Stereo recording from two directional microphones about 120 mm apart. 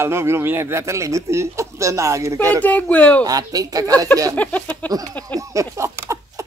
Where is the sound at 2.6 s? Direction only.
10° left (ahead or behind).